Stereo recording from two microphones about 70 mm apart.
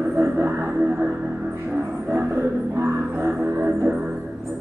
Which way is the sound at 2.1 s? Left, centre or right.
Right.